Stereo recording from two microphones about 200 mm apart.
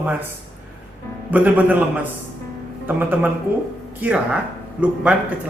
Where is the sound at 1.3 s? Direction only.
10° right (ahead or behind).